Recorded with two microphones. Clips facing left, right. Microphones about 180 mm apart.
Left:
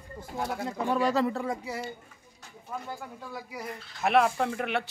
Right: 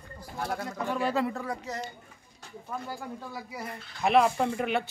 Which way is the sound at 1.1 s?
35° left (ahead or behind).